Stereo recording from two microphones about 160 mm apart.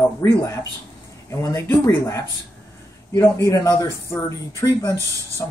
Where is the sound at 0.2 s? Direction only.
15° left (ahead or behind).